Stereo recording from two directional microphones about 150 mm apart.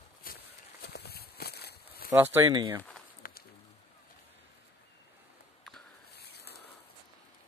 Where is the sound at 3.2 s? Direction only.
70° left (ahead or behind).